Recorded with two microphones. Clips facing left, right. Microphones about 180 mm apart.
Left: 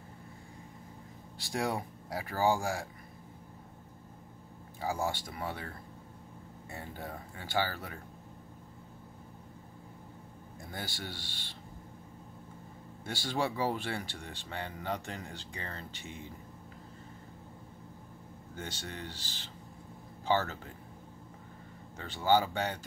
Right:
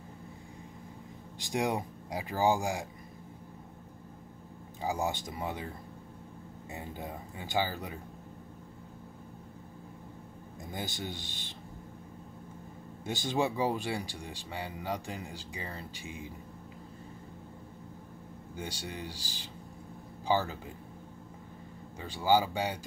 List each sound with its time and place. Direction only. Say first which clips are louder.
1.4 s speech: right 2 dB; 20° right (ahead or behind)
4.8 s speech: right 1 dB; 20° right (ahead or behind)
10.6 s speech: right 3 dB; 20° right (ahead or behind)
13.0 s speech: right 3 dB; 20° right (ahead or behind)
18.6 s speech: right 2 dB; 10° right (ahead or behind)
22.0 s speech: right 1 dB; 10° right (ahead or behind)